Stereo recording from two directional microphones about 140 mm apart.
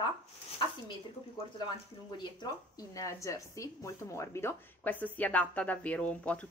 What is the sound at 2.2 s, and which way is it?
A woman's voice, 30° left (ahead or behind).